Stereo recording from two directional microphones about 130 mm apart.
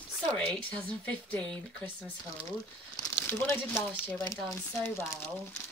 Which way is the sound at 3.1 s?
15° left (ahead or behind).